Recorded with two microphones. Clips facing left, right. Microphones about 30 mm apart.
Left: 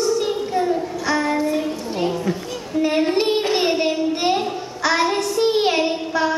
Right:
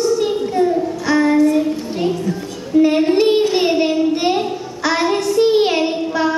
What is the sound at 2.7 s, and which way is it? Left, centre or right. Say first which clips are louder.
Female singing: right 6 dB; centre.